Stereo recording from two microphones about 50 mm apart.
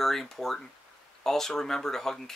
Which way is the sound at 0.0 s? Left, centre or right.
Centre.